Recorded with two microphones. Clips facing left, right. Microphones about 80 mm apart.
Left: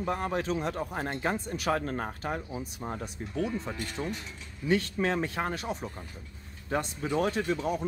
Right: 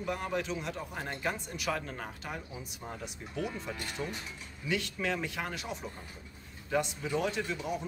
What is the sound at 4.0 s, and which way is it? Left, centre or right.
Speech, left.